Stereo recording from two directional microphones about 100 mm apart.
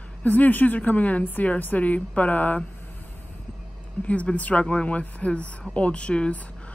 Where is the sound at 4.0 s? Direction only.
15° left (ahead or behind).